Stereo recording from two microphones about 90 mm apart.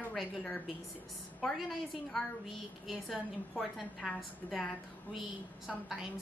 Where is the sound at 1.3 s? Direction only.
Centre (ahead or behind).